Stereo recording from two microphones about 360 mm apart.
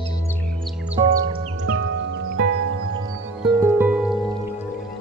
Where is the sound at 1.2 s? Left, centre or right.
Right.